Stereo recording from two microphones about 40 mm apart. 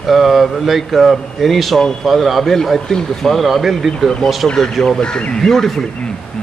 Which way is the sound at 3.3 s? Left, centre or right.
Centre.